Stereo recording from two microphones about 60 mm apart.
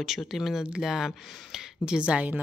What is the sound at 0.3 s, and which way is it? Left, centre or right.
Speech, centre.